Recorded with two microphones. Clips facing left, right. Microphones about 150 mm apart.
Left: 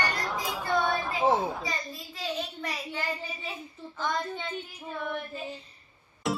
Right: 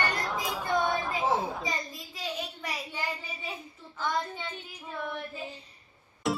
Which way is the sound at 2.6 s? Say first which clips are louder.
Left 2 dB; 10° right (ahead or behind).